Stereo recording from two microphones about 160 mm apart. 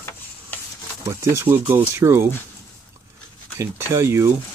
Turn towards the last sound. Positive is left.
turn(degrees=-15)  # may be behind; listen again after turning